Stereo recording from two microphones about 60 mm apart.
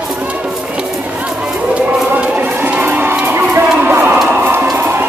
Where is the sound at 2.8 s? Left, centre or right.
Right.